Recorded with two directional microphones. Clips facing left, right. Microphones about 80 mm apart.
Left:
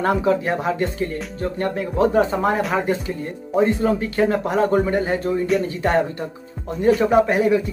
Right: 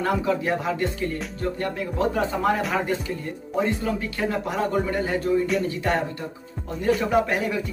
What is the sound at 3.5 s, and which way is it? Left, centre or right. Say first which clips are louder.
Speech: left 7 dB; left.